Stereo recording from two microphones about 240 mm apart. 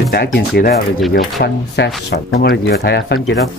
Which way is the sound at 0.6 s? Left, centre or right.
Left.